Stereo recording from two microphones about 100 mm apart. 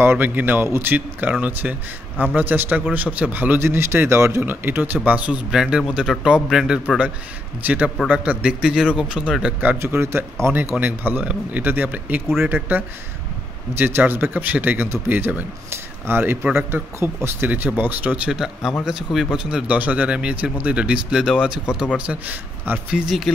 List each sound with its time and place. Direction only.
0.0 s a man's voice: 20° right (ahead or behind); by 7.1 s 5° right (ahead or behind)
7.6 s a man's voice: 15° right (ahead or behind)
22.8 s speech: 5° right (ahead or behind)